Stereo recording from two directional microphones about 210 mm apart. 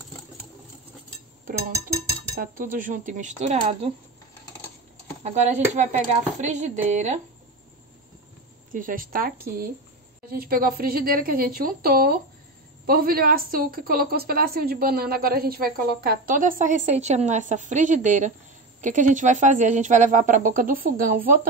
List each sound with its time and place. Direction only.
2.4 s speech: 40° right (ahead or behind)
5.2 s speech: 30° right (ahead or behind)
8.7 s speech: 40° right (ahead or behind)
10.3 s a woman's voice: 45° right (ahead or behind)